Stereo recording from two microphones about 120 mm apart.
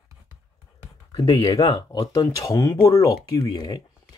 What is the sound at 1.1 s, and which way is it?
Speech, 35° left (ahead or behind).